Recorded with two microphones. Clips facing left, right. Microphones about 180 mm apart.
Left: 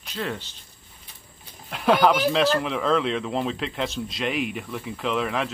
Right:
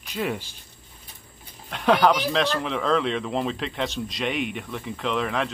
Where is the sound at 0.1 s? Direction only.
10° right (ahead or behind).